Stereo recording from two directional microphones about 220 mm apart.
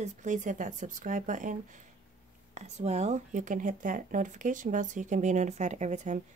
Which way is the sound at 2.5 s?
30° right (ahead or behind).